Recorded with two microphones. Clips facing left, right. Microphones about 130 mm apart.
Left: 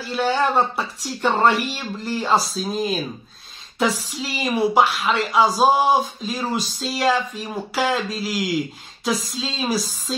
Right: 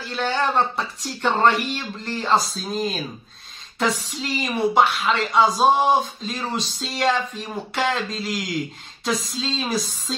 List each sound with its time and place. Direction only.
0.1 s speech: 5° left (ahead or behind)
4.1 s speech: 5° left (ahead or behind)